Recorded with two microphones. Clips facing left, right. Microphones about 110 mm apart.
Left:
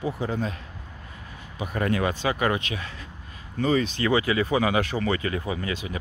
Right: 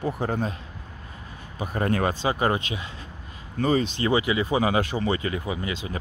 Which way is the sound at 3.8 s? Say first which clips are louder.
Even; 25° right (ahead or behind).